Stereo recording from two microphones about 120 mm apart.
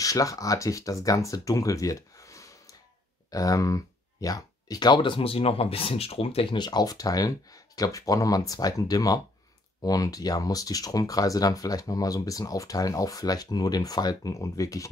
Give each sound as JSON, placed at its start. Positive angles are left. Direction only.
{"t": 0.0, "sound": "speech", "side_deg": 30}